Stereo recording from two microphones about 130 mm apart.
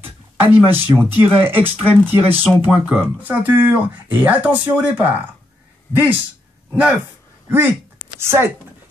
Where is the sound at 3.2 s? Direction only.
15° right (ahead or behind).